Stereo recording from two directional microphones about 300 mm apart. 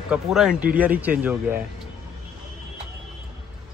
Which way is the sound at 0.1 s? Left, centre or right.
Centre.